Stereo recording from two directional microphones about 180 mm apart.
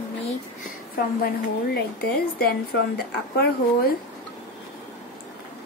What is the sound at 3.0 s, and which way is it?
Speech, 60° left (ahead or behind).